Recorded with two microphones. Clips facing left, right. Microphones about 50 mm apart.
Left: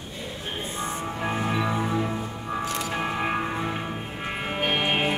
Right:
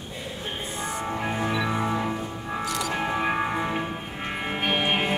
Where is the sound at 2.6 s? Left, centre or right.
Left.